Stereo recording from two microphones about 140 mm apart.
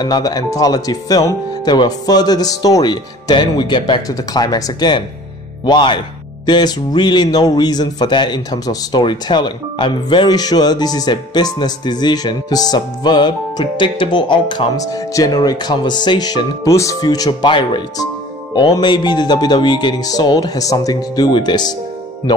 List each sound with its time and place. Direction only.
0.0 s a man's voice: 30° left (ahead or behind)